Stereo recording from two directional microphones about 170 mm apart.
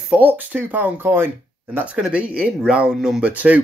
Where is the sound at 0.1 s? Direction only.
10° right (ahead or behind).